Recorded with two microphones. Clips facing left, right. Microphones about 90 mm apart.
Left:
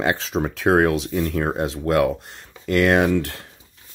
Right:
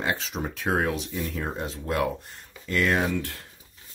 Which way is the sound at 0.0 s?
90° left.